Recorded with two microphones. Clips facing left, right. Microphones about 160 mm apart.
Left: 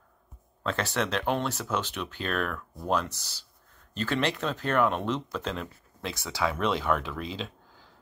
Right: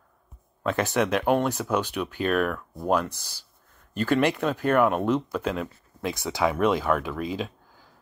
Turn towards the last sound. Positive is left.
turn(degrees=-10)  # may be behind; listen again after turning